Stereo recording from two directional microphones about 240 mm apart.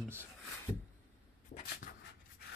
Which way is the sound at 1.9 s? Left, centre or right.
Left.